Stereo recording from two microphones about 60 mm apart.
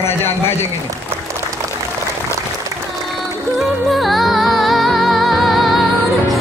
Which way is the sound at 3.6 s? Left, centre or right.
Centre.